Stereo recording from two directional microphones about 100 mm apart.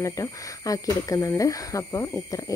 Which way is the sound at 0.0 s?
35° left (ahead or behind).